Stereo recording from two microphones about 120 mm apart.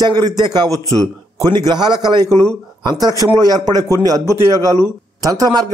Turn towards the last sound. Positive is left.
turn(degrees=-30)  # may be behind; listen again after turning